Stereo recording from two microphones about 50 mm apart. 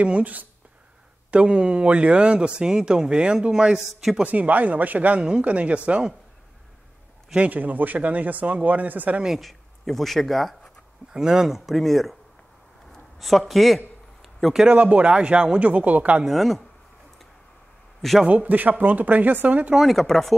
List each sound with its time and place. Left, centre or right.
0.0 s speech: right
1.3 s speech: right
4.2 s speech: right
7.3 s speech: right
9.4 s speech: centre
11.1 s speech: centre
11.7 s speech: centre
14.7 s speech: right
16.3 s speech: centre
18.2 s speech: right
19.8 s speech: centre